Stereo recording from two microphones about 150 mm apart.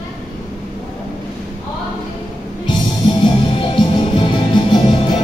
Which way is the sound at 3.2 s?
30° left (ahead or behind).